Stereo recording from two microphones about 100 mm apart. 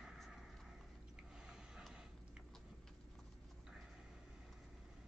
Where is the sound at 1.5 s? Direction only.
5° right (ahead or behind).